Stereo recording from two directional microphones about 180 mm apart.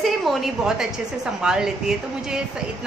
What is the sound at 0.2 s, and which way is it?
Speech, centre (ahead or behind).